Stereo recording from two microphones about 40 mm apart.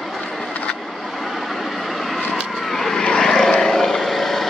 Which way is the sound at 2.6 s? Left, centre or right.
Centre.